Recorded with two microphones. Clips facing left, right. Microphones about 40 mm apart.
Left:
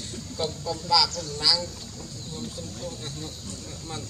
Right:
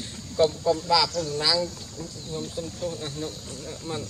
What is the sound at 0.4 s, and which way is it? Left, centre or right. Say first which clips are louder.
Speech: right 9 dB; centre.